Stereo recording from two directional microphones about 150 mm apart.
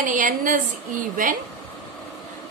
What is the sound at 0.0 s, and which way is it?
A woman's voice, 60° right (ahead or behind).